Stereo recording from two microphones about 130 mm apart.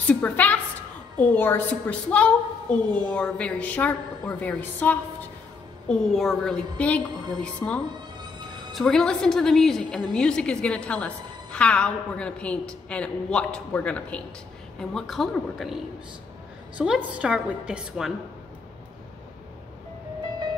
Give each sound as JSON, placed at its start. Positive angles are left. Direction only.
{"t": 0.0, "sound": "a woman's voice", "side_deg": 10}
{"t": 5.9, "sound": "a woman's voice", "side_deg": 0}